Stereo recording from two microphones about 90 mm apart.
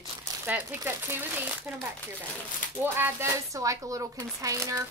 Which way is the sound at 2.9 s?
25° right (ahead or behind).